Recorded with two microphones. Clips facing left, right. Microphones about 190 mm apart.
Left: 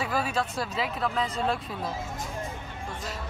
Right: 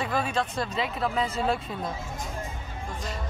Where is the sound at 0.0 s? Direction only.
5° left (ahead or behind).